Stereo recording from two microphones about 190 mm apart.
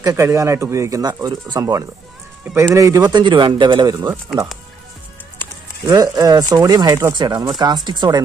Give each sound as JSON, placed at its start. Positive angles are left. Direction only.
{"t": 0.0, "sound": "speech", "side_deg": -15}
{"t": 5.9, "sound": "speech", "side_deg": -20}